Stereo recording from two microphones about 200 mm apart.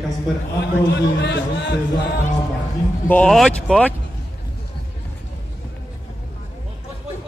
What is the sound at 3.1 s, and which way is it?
Speech, 5° left (ahead or behind).